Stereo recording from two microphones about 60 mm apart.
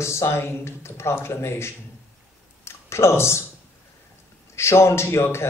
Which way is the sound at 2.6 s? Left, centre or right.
Left.